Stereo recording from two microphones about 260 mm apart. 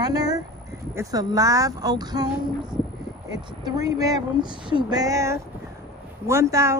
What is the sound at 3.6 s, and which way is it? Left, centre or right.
Speech, centre.